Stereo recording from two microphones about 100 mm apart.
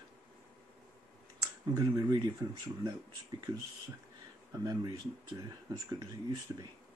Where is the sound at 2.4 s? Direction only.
50° right (ahead or behind).